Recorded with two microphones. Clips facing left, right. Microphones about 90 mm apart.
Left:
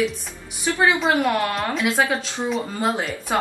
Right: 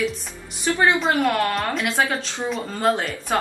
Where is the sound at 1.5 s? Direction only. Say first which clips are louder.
Left 1 dB; centre (ahead or behind).